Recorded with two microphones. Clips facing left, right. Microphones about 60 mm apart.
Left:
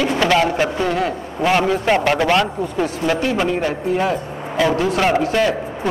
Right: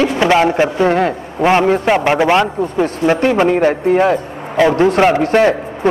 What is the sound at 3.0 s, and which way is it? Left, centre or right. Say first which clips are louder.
A man's voice: right 7 dB; right.